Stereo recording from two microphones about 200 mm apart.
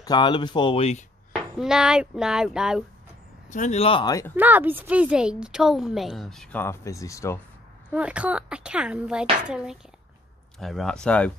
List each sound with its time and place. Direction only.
0.0 s speech: 20° left (ahead or behind)
1.3 s a woman's voice: 5° right (ahead or behind)
3.4 s speech: 40° left (ahead or behind); by 4.3 s 20° left (ahead or behind)
4.4 s a woman's voice: 10° right (ahead or behind); by 7.3 s 15° left (ahead or behind)
7.9 s a woman's voice: 5° right (ahead or behind)